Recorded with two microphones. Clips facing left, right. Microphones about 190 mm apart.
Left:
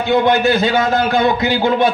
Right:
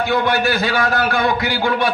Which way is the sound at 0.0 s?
20° left (ahead or behind).